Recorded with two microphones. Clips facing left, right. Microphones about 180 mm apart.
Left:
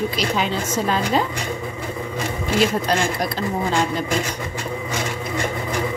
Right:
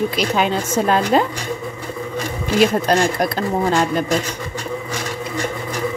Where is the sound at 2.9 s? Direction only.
50° right (ahead or behind).